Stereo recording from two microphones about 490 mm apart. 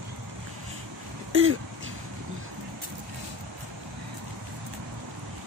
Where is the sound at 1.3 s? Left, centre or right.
Right.